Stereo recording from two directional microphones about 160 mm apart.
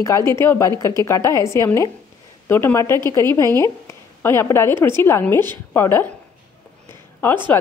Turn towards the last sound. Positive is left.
turn(degrees=15)  # may be behind; listen again after turning